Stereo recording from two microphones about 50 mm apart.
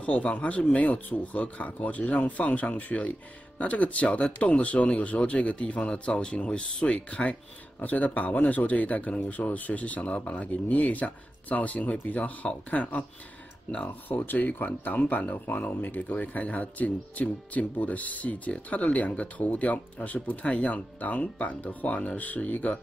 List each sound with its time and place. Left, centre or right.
0.0 s speech: left
7.8 s speech: left